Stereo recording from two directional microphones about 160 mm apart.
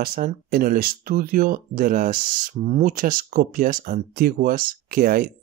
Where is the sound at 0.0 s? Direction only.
65° right (ahead or behind).